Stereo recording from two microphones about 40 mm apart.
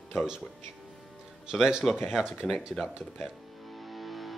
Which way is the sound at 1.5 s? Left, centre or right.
Centre.